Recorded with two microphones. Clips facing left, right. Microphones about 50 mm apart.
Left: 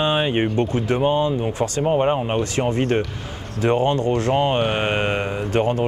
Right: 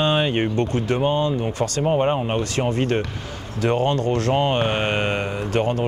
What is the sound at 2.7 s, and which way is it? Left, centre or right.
Speech, left.